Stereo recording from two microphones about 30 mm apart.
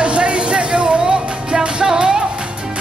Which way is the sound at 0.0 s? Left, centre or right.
Right.